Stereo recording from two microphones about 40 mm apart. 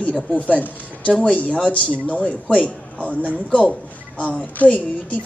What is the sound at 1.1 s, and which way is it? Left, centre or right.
A man's voice, left.